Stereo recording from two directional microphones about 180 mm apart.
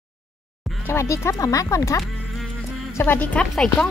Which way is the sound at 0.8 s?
15° left (ahead or behind).